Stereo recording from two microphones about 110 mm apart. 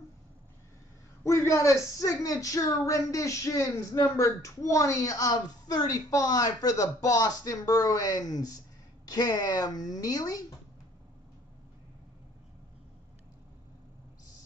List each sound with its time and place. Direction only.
1.2 s a woman's voice: 25° left (ahead or behind)